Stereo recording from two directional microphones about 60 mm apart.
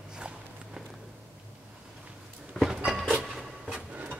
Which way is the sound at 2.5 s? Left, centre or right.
Centre.